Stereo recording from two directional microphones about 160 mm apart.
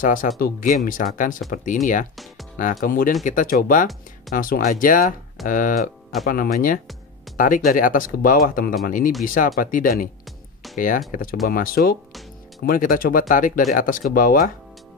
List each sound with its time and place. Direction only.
0.0 s speech: 55° left (ahead or behind)
2.8 s speech: 55° left (ahead or behind)